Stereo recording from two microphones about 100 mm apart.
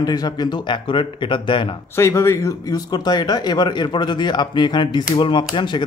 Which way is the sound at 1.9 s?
25° left (ahead or behind).